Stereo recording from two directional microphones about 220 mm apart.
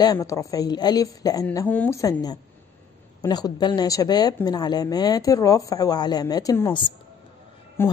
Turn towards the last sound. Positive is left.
turn(degrees=10)  # may be behind; listen again after turning